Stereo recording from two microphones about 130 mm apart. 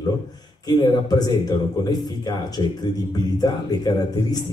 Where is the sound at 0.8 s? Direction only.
35° left (ahead or behind).